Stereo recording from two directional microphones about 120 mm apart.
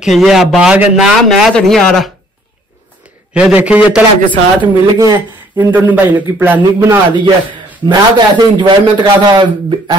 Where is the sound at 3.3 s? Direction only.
10° right (ahead or behind).